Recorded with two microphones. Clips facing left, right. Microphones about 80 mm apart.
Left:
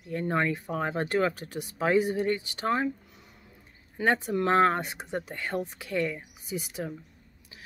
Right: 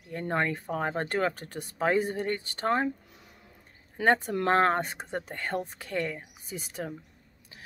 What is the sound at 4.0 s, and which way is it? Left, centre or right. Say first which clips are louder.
Speech: right 1 dB; right.